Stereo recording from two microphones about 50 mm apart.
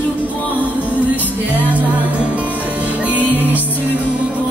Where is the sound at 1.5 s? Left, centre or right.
Right.